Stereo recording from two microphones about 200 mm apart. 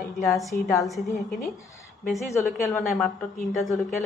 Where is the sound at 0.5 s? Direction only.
45° left (ahead or behind).